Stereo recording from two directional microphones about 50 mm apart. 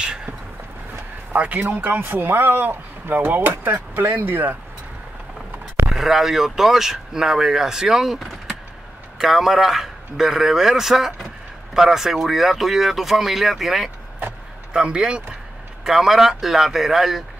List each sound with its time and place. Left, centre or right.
1.3 s speech: right
5.9 s speech: centre
14.7 s speech: centre
15.8 s speech: centre